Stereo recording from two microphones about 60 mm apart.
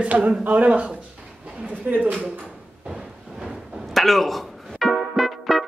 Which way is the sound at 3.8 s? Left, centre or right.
Centre.